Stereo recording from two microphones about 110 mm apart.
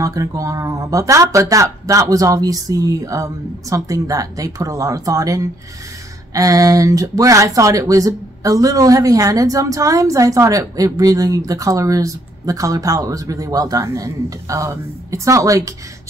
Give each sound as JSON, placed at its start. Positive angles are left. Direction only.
{"t": 0.0, "sound": "speech", "side_deg": -30}